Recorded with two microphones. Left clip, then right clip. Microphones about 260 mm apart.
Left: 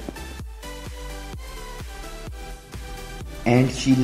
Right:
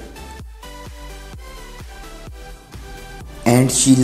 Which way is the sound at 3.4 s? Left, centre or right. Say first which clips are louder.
Right 5 dB; centre.